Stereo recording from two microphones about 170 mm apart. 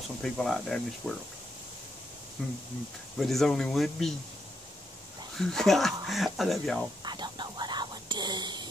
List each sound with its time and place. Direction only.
0.2 s speech: centre (ahead or behind)
2.4 s speech: centre (ahead or behind)
5.4 s speech: centre (ahead or behind)
7.1 s whispering: 25° right (ahead or behind)